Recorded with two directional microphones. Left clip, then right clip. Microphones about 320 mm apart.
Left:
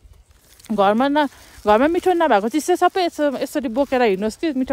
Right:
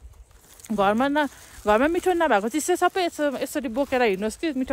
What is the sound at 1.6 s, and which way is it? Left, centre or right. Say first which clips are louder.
Speech: left 5 dB; left.